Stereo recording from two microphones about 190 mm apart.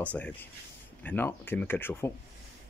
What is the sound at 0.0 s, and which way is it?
Speech, 10° left (ahead or behind).